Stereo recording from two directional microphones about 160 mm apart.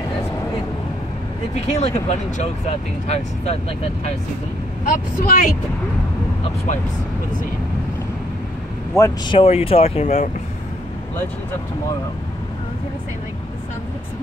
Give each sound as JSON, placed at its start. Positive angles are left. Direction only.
{"t": 1.5, "sound": "speech", "side_deg": 45}
{"t": 4.8, "sound": "speech", "side_deg": 60}
{"t": 8.9, "sound": "speech", "side_deg": 20}
{"t": 9.3, "sound": "speech", "side_deg": 40}